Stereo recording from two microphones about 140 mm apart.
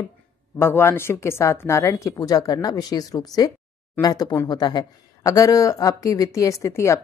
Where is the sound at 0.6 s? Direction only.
15° left (ahead or behind).